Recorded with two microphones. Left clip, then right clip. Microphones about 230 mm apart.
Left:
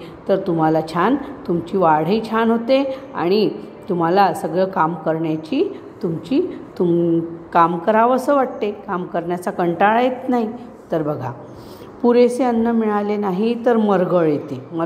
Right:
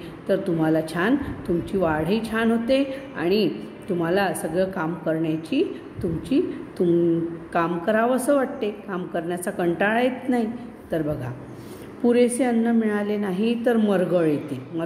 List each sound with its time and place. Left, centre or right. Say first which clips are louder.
0.3 s a woman's voice: left 5 dB; centre